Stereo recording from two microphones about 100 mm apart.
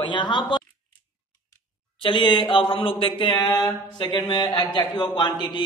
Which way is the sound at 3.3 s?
30° left (ahead or behind).